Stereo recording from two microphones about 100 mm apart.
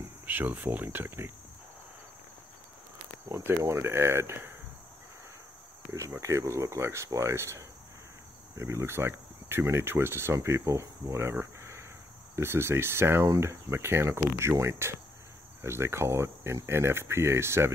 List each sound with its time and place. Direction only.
0.3 s speech: 20° right (ahead or behind)
3.3 s speech: 25° right (ahead or behind)
5.9 s speech: 30° right (ahead or behind)